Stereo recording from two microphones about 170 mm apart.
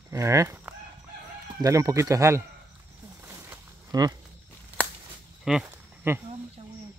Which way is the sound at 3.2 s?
15° right (ahead or behind).